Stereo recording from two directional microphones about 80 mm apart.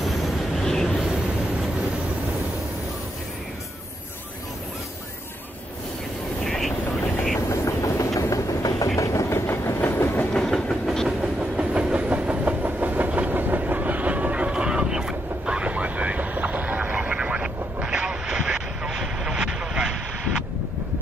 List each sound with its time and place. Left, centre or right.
0.0 s train: centre
6.4 s vehicle: centre
7.3 s train: left
10.3 s train: centre
11.1 s train: centre